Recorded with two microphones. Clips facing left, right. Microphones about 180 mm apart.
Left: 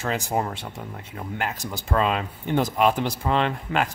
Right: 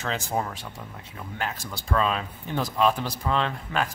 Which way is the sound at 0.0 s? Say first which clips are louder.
Left 3 dB; 10° left (ahead or behind).